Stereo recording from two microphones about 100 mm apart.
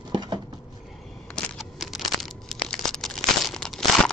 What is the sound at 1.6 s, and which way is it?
Crumpling, centre (ahead or behind).